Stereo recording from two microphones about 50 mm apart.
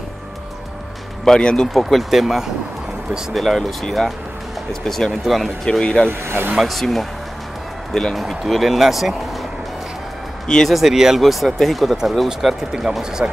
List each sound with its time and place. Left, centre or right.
1.2 s speech: centre
1.7 s speech: centre
5.7 s speech: centre
6.0 s speech: right
6.6 s speech: centre
10.7 s speech: centre
13.2 s speech: right